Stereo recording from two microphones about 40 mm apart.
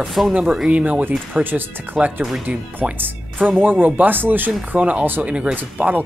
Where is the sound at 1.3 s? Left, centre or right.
Right.